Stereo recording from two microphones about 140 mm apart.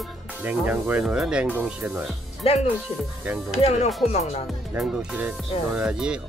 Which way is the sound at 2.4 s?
45° left (ahead or behind).